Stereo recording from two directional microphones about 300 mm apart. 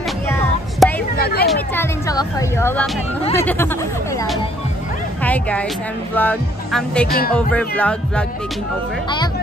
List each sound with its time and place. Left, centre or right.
0.3 s music: centre
1.2 s a sound: left
1.5 s music: centre
5.2 s speech: centre
6.1 s music: centre
7.1 s music: left
7.3 s music: centre